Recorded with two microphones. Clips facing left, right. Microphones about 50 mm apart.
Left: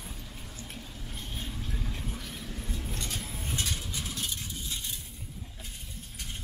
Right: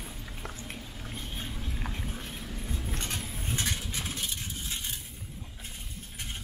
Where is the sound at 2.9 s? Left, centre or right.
Right.